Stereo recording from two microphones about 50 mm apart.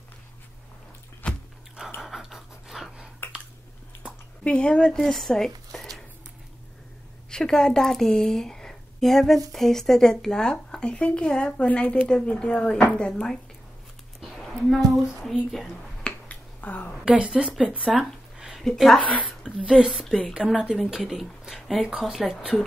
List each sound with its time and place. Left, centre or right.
1.2 s a sound: left
2.0 s pant: centre
4.5 s speech: centre
7.2 s a woman's voice: centre
13.0 s a woman's voice: centre
14.2 s a sound: centre
16.3 s finger snapping: left
17.0 s speech: centre
18.6 s a woman's voice: centre
19.4 s speech: centre
19.9 s a woman's voice: centre